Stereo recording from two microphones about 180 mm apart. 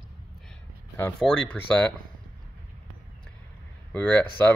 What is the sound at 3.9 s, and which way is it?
Speech, 5° left (ahead or behind).